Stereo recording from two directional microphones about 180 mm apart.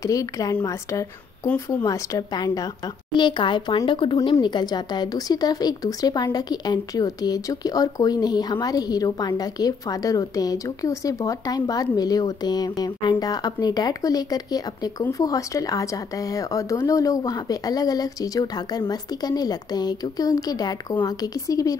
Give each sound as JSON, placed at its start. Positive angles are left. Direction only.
{"t": 0.0, "sound": "speech", "side_deg": 20}